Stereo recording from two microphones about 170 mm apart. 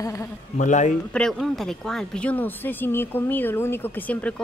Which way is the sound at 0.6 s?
45° left (ahead or behind).